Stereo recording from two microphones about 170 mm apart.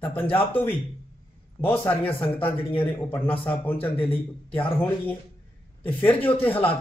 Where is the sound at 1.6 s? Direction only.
10° left (ahead or behind).